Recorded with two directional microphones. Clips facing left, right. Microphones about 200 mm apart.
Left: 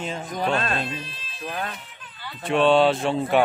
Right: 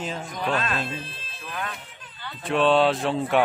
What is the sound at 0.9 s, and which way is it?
Speech, 50° right (ahead or behind).